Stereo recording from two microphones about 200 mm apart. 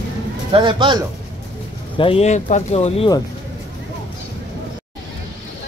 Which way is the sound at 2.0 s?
30° left (ahead or behind).